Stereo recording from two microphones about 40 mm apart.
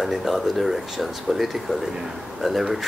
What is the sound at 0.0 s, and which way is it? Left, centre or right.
Speech, centre.